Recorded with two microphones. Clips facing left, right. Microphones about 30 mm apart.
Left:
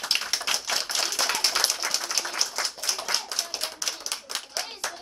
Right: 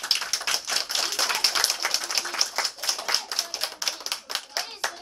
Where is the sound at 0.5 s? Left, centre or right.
Centre.